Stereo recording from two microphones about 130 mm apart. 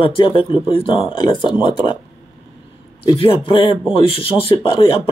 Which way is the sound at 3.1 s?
45° left (ahead or behind).